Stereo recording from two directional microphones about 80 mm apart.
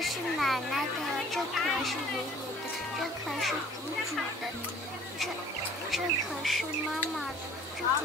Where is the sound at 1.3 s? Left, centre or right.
Centre.